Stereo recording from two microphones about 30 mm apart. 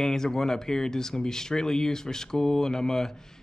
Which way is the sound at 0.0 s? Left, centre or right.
Centre.